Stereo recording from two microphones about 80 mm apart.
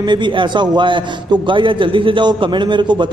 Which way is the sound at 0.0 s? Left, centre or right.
Right.